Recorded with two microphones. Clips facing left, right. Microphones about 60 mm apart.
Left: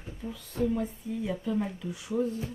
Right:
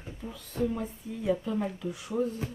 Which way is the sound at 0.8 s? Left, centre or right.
Centre.